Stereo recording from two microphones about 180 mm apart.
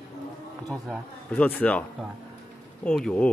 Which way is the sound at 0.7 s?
5° left (ahead or behind).